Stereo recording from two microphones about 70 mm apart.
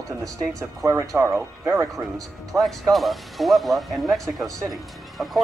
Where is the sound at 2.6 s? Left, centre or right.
Centre.